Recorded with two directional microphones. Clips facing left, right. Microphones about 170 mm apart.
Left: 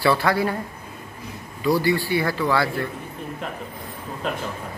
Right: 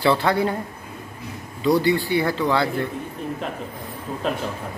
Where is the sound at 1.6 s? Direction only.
20° right (ahead or behind).